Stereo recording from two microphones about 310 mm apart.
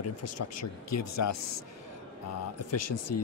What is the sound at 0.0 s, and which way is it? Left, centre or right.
A man's voice, left.